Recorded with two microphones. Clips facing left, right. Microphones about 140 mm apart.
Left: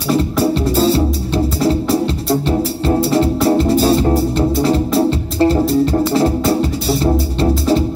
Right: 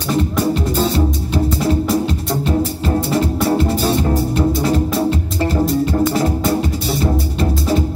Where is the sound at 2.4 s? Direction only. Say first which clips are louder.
Left 2 dB; 30° left (ahead or behind).